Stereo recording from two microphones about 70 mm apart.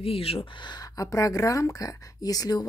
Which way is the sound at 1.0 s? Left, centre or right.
Left.